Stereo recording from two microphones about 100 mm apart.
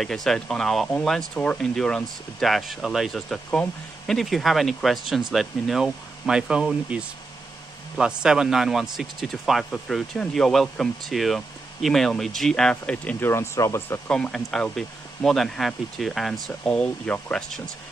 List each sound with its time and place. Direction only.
0.0 s speech: 5° left (ahead or behind)
8.2 s speech: 5° right (ahead or behind); by 13.3 s 15° left (ahead or behind)
13.3 s speech: 30° left (ahead or behind)
14.1 s speech: 5° left (ahead or behind)